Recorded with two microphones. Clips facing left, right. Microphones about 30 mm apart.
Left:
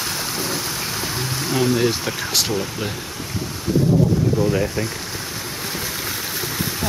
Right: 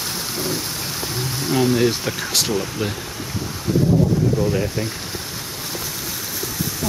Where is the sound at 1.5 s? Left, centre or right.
Centre.